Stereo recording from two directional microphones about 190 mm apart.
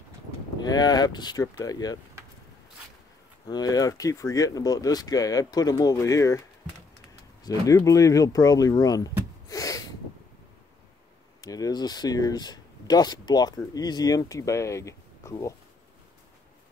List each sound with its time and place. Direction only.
0.6 s speech: 20° left (ahead or behind)
3.4 s speech: 20° left (ahead or behind)
7.4 s speech: 15° left (ahead or behind)
11.4 s speech: 20° left (ahead or behind)